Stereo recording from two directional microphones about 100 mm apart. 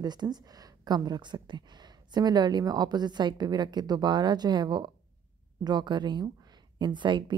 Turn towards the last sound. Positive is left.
turn(degrees=-50)  # may be behind; listen again after turning